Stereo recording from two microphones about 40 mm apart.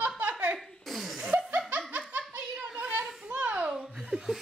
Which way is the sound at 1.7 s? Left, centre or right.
Right.